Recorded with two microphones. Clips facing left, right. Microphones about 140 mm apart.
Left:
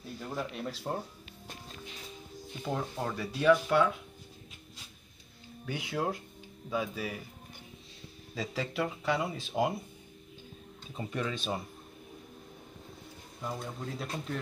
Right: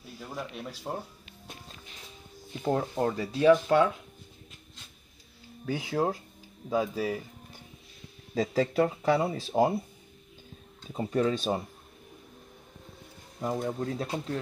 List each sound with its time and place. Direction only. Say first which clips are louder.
0.2 s speech: left 1 dB; centre (ahead or behind)
2.6 s speech: right 7 dB; 45° right (ahead or behind)
5.7 s speech: right 5 dB; 35° right (ahead or behind)
8.4 s speech: right 8 dB; 45° right (ahead or behind)
10.9 s speech: right 8 dB; 35° right (ahead or behind)
13.4 s speech: right 8 dB; 45° right (ahead or behind)